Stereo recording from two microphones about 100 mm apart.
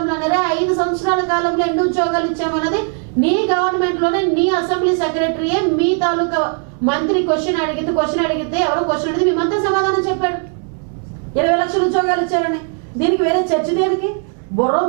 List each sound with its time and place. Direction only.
0.0 s speech: 15° right (ahead or behind)
11.3 s speech: 15° right (ahead or behind)